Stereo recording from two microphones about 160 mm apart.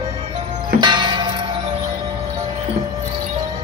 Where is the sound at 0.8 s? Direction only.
30° right (ahead or behind).